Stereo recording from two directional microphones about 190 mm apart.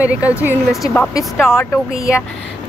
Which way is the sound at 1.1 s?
10° left (ahead or behind).